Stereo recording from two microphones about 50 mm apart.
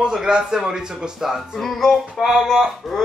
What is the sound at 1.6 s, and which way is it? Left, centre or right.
A woman's voice, centre.